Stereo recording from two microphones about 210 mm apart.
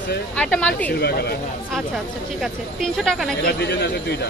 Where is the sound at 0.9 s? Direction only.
50° left (ahead or behind).